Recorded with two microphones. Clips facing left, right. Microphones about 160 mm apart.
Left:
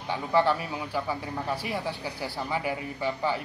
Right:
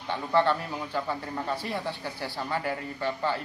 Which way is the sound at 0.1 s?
10° left (ahead or behind).